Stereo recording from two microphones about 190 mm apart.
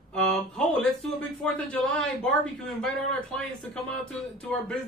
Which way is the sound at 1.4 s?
5° left (ahead or behind).